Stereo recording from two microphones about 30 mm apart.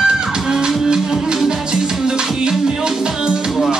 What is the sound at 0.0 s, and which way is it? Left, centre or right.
Music, right.